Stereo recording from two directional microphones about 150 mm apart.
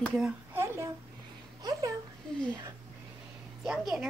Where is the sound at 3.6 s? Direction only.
5° right (ahead or behind).